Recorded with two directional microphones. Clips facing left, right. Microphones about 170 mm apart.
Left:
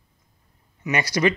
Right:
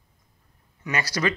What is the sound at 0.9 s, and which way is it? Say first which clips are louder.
Speech: left 5 dB; 20° left (ahead or behind).